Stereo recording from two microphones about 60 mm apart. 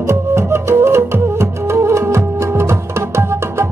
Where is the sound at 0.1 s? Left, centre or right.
Right.